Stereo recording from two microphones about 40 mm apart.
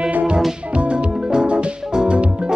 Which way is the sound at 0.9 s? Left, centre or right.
Right.